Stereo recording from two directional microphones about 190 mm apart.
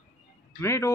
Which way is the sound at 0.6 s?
15° left (ahead or behind).